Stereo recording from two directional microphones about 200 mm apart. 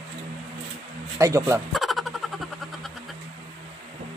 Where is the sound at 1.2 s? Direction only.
15° right (ahead or behind).